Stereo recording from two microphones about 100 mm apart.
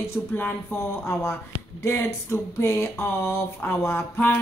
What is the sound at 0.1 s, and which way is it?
A woman's voice, 20° left (ahead or behind).